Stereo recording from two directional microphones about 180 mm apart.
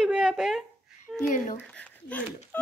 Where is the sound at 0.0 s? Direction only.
5° right (ahead or behind).